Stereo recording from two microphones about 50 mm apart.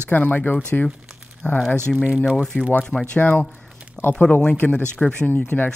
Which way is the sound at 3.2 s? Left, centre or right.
Left.